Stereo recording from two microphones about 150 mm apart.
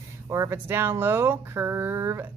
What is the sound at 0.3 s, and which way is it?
Speech, 15° right (ahead or behind).